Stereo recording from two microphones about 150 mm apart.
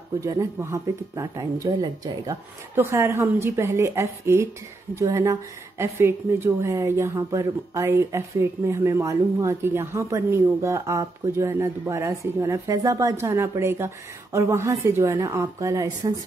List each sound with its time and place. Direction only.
0.2 s a woman's voice: 20° right (ahead or behind)